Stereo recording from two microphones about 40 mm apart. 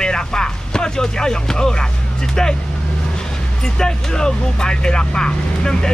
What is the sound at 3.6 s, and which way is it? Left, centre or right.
Speech, centre.